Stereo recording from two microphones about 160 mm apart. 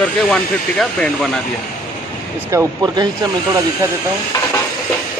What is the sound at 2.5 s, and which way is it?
Speech, 20° right (ahead or behind).